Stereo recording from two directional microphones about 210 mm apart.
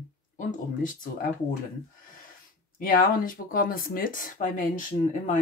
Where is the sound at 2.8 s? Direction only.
40° left (ahead or behind).